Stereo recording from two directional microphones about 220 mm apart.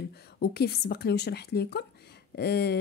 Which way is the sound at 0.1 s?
45° left (ahead or behind).